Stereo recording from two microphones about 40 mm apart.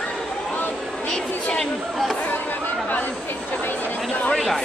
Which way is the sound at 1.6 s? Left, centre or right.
Centre.